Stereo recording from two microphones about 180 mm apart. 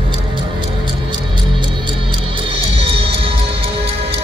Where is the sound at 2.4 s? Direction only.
30° right (ahead or behind).